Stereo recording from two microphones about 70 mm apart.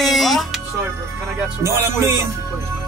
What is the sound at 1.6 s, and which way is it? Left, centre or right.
Music, right.